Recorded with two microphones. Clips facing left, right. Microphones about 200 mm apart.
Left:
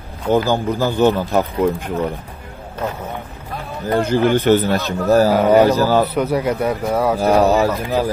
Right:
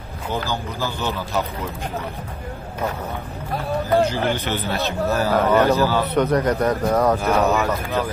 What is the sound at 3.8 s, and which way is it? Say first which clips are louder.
Speech: left 5 dB; 55° left (ahead or behind).